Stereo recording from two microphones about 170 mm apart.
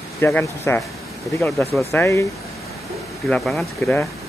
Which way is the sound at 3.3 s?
5° left (ahead or behind).